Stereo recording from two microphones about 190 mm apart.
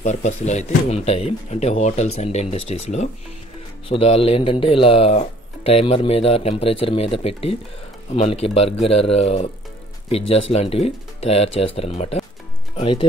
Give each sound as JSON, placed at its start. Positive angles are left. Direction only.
{"t": 0.0, "sound": "speech", "side_deg": 40}